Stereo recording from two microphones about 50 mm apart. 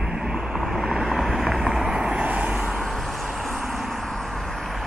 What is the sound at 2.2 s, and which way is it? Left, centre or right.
Vehicle, right.